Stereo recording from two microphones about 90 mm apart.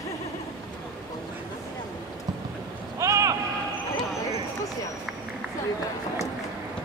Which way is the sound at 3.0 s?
35° right (ahead or behind).